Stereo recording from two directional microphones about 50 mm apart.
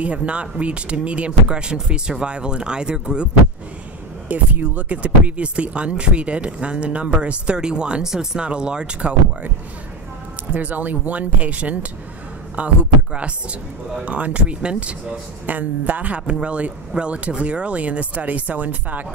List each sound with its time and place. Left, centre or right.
0.0 s speech: right
4.3 s speech: right
10.5 s speech: right
15.4 s speech: right